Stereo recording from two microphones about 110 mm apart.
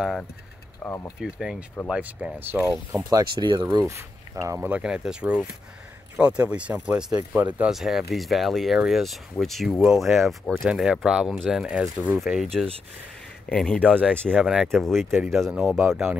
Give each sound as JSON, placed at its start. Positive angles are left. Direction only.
{"t": 0.0, "sound": "speech", "side_deg": 0}
{"t": 0.8, "sound": "speech", "side_deg": 20}
{"t": 1.2, "sound": "speech", "side_deg": -5}
{"t": 2.9, "sound": "speech", "side_deg": -35}
{"t": 4.6, "sound": "speech", "side_deg": -10}
{"t": 13.5, "sound": "speech", "side_deg": 10}
{"t": 14.4, "sound": "speech", "side_deg": -5}